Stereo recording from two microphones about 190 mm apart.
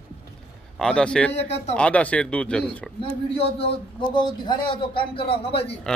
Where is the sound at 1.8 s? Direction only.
5° left (ahead or behind).